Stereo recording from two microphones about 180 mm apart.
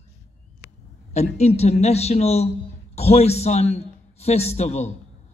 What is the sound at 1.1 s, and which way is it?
A man's voice, 40° left (ahead or behind).